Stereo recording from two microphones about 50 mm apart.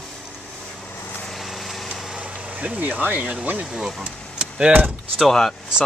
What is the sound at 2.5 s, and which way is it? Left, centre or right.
Speech, right.